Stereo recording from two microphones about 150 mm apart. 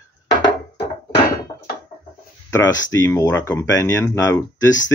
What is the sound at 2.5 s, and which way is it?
Speech, 20° left (ahead or behind).